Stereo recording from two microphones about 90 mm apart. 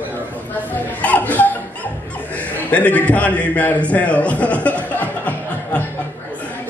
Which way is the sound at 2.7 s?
15° left (ahead or behind).